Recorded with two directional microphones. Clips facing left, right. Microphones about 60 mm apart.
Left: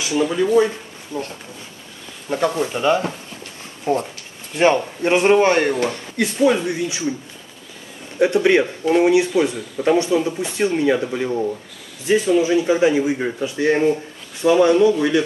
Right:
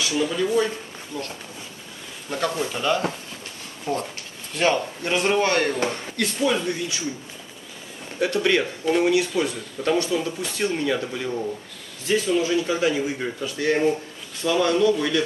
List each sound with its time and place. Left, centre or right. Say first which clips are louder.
0.0 s speech: left 4 dB; left
8.2 s speech: left 6 dB; left